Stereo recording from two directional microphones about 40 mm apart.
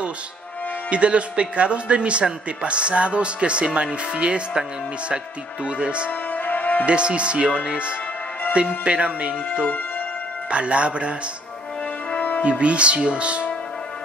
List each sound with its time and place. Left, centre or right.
0.8 s speech: right
6.3 s music: left
6.9 s speech: right
8.8 s speech: right
10.5 s speech: right
12.1 s music: left
12.4 s speech: right